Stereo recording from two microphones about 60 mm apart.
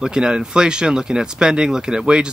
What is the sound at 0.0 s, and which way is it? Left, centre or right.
Speech, centre.